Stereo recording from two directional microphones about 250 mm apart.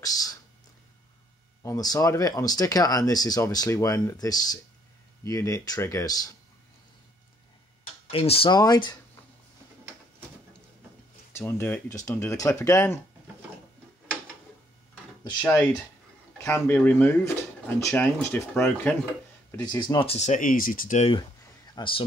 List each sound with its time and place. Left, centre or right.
0.0 s a sound: centre
1.6 s speech: centre
8.1 s speech: left
11.3 s speech: centre
15.4 s speech: centre; by 21.1 s left
21.7 s speech: left